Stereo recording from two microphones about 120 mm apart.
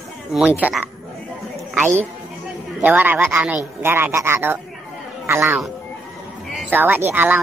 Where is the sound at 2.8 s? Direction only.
15° right (ahead or behind).